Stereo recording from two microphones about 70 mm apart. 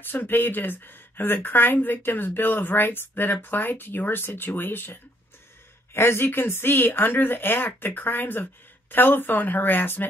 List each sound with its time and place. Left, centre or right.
0.0 s speech: left
5.9 s speech: left